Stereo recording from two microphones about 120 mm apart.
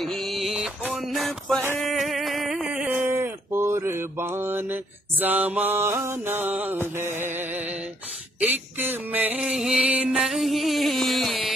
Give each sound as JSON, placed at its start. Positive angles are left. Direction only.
{"t": 0.0, "sound": "a sound", "side_deg": 0}
{"t": 1.1, "sound": "music", "side_deg": 0}
{"t": 1.9, "sound": "a sound", "side_deg": 0}
{"t": 5.2, "sound": "mantra", "side_deg": -15}
{"t": 8.4, "sound": "mantra", "side_deg": -15}
{"t": 10.0, "sound": "music", "side_deg": 0}